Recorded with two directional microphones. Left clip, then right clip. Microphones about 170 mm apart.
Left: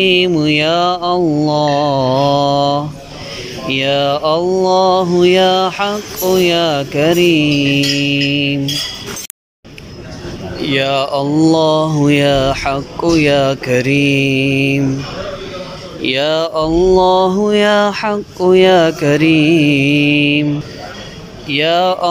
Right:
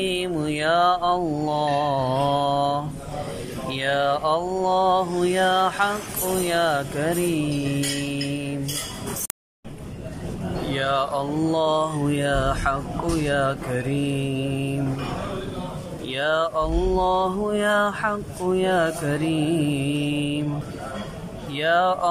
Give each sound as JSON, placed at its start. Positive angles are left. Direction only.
{"t": 0.0, "sound": "mantra", "side_deg": 10}
{"t": 10.7, "sound": "mantra", "side_deg": 20}
{"t": 16.1, "sound": "mantra", "side_deg": 20}
{"t": 21.5, "sound": "mantra", "side_deg": 15}